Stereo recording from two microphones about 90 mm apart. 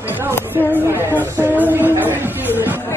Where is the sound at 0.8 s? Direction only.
25° right (ahead or behind).